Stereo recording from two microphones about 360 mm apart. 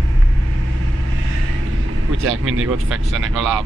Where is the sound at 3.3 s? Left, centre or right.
Centre.